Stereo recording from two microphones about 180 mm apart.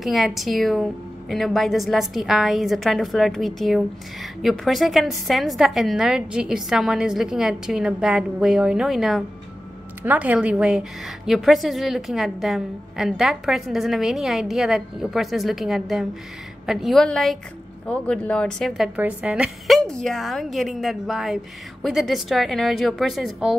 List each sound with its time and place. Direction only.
0.0 s a woman's voice: centre (ahead or behind)
18.9 s a woman's voice: 10° right (ahead or behind)